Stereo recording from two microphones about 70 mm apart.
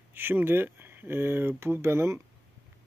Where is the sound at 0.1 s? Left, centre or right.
Right.